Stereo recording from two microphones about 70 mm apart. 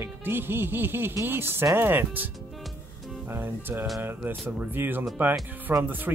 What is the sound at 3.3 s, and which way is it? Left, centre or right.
Speech, right.